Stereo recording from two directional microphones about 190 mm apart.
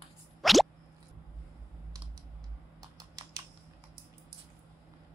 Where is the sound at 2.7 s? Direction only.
20° right (ahead or behind).